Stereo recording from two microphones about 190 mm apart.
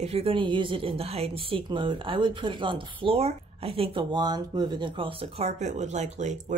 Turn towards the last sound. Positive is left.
turn(degrees=-40)  # may be behind; listen again after turning